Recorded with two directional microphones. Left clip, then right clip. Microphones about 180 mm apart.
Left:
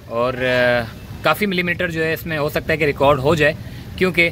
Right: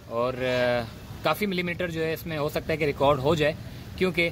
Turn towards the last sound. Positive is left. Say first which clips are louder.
# left 9 dB
turn(degrees=-15)  # may be behind; listen again after turning